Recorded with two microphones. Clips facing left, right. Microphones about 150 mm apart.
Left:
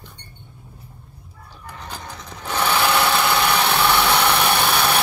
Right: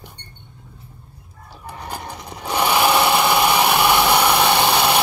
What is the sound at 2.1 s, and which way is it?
Sewing machine, 20° right (ahead or behind).